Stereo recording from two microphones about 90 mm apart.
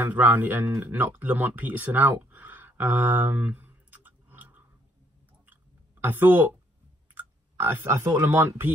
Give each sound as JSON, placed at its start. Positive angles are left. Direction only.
{"t": 0.0, "sound": "speech", "side_deg": -20}
{"t": 0.7, "sound": "a sound", "side_deg": -20}
{"t": 7.2, "sound": "speech", "side_deg": -25}